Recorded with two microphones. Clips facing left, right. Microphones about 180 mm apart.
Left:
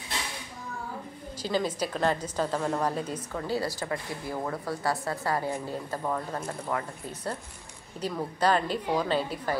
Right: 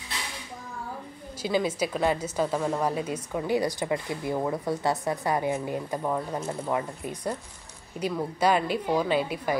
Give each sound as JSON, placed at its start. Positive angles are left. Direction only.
{"t": 1.4, "sound": "speech", "side_deg": -10}